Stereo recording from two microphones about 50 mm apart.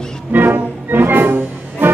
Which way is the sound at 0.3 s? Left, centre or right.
Right.